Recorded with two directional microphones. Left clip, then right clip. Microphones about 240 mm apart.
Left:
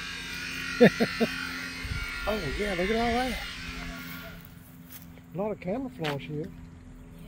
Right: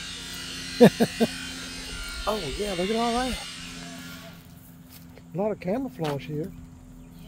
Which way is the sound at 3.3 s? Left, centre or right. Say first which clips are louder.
Even; right.